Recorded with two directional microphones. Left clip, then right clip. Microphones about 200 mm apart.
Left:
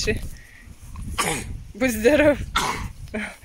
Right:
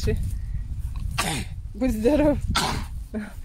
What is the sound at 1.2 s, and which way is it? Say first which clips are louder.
Speech: left 3 dB; 30° right (ahead or behind).